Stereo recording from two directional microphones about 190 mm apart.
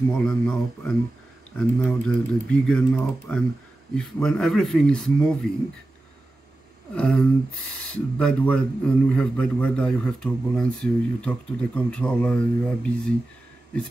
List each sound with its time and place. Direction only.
0.2 s a man's voice: 5° left (ahead or behind)
7.0 s a man's voice: 5° left (ahead or behind)